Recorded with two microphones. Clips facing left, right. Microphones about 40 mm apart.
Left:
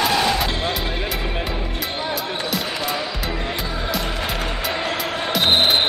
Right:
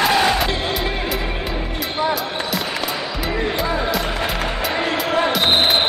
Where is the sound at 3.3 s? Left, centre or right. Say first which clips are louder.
Right 4 dB; centre.